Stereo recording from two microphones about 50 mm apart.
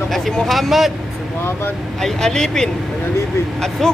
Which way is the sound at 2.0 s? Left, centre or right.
Centre.